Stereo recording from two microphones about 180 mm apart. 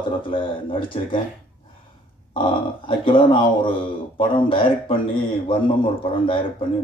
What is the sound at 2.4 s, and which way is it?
Speech, 30° left (ahead or behind).